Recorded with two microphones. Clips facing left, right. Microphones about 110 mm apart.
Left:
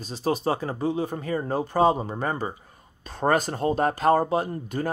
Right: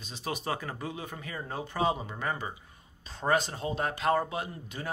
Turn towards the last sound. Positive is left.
turn(degrees=50)  # may be behind; listen again after turning